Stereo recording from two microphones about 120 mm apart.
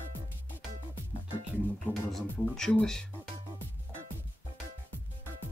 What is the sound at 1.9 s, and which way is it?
Music, 15° left (ahead or behind).